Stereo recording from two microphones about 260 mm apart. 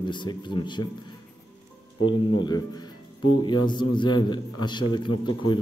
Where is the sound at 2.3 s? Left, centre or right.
Centre.